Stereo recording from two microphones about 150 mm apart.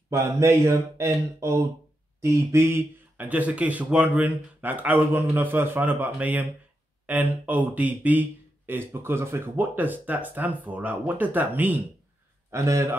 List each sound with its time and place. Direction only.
0.1 s a man's voice: 20° right (ahead or behind)